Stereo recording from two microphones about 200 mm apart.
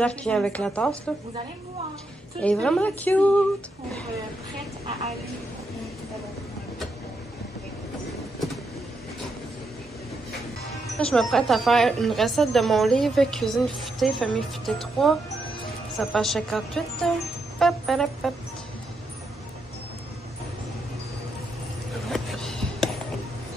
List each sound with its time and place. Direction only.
0.0 s a woman's voice: 5° left (ahead or behind)
2.4 s a woman's voice: 5° left (ahead or behind)
11.0 s a woman's voice: centre (ahead or behind)
17.6 s music: centre (ahead or behind)
22.1 s music: centre (ahead or behind)